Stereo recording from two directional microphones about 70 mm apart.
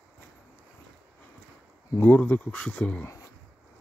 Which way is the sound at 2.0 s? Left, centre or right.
Left.